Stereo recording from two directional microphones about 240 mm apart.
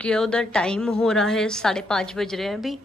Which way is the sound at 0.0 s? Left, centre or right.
Centre.